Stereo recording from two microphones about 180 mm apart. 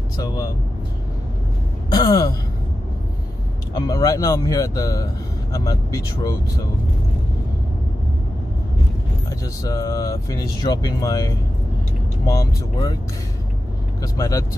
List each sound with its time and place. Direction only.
1.9 s gasp: 25° left (ahead or behind)
3.7 s speech: 20° left (ahead or behind)
9.6 s speech: 20° left (ahead or behind)
14.1 s speech: 15° left (ahead or behind)